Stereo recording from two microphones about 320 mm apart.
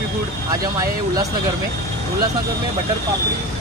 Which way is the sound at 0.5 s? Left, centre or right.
Centre.